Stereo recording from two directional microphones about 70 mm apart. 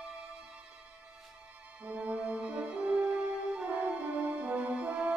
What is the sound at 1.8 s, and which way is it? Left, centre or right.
French horn, centre.